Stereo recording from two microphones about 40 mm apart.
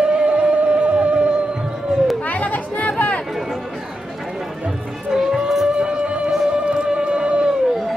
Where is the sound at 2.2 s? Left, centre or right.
Left.